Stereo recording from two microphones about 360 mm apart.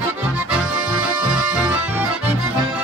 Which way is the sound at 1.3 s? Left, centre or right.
Centre.